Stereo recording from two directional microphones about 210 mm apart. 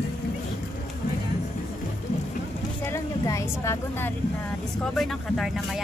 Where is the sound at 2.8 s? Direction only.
15° left (ahead or behind).